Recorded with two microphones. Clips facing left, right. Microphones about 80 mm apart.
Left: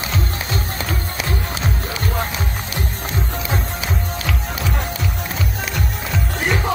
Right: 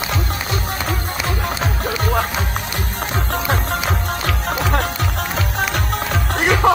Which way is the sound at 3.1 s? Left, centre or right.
Right.